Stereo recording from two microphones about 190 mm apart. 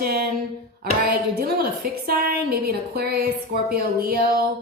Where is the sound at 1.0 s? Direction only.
55° right (ahead or behind).